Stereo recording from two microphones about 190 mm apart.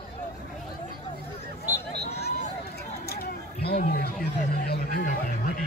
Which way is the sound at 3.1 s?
55° left (ahead or behind).